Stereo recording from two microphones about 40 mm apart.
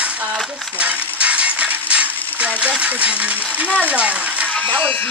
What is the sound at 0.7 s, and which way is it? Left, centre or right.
Coin, right.